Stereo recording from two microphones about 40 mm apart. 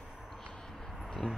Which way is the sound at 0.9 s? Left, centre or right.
Centre.